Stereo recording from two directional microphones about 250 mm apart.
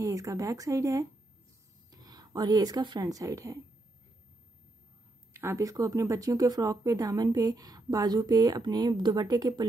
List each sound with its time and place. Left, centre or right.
0.0 s speech: centre
5.3 s speech: centre